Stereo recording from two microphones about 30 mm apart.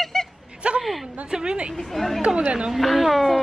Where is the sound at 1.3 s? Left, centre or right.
Right.